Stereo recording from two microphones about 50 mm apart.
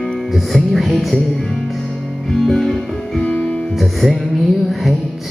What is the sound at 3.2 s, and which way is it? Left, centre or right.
Music, centre.